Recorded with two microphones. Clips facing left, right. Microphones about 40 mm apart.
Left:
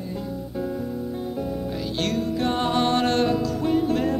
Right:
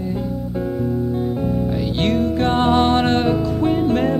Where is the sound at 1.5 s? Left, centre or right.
Right.